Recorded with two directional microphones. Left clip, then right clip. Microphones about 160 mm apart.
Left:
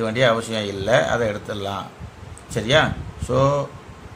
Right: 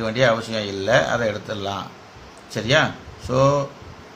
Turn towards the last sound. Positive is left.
turn(degrees=15)  # may be behind; listen again after turning